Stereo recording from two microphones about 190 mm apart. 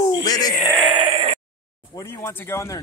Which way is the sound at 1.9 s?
15° left (ahead or behind).